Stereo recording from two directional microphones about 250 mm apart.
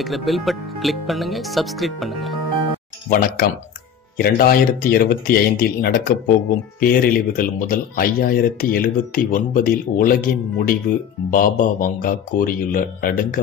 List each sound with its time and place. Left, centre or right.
0.0 s speech: centre
3.1 s speech: left